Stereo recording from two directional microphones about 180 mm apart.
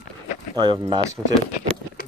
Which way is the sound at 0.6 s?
25° right (ahead or behind).